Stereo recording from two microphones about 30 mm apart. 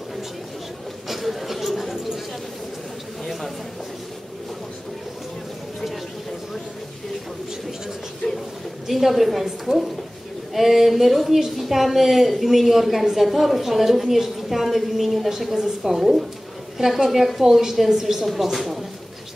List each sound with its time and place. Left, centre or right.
1.0 s chatter: centre
3.3 s a sound: centre
8.8 s a woman's voice: centre
10.5 s a woman's voice: centre